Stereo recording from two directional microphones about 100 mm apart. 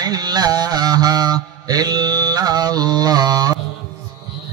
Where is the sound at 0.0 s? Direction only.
40° right (ahead or behind).